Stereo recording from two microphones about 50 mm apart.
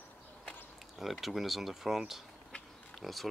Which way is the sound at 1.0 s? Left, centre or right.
Centre.